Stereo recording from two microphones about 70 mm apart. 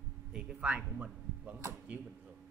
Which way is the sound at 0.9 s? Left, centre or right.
Right.